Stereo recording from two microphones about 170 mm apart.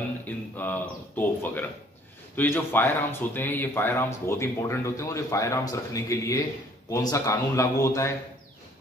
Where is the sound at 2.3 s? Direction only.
10° left (ahead or behind).